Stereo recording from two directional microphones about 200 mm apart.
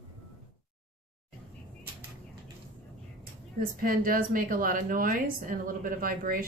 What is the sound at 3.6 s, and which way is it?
A woman's voice, 45° right (ahead or behind).